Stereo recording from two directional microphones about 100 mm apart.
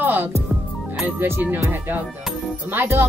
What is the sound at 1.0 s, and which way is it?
Speech, 20° right (ahead or behind).